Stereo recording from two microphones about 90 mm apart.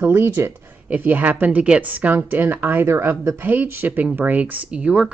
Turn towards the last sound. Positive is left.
turn(degrees=-15)  # may be behind; listen again after turning